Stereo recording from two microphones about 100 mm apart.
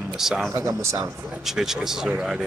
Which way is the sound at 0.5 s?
30° right (ahead or behind).